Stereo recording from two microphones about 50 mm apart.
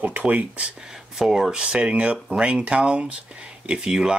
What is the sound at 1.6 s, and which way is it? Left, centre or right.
Speech, right.